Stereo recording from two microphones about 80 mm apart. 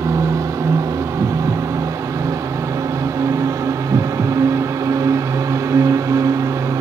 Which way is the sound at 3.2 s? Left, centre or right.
Right.